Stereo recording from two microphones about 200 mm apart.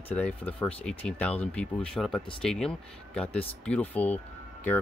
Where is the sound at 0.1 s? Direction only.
10° left (ahead or behind).